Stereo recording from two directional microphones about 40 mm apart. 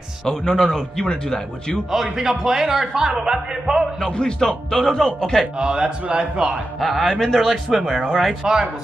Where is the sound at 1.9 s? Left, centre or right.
Centre.